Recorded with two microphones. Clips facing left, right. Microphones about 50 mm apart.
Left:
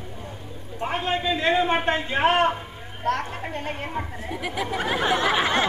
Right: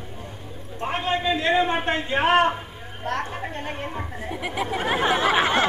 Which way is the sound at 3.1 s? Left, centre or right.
Centre.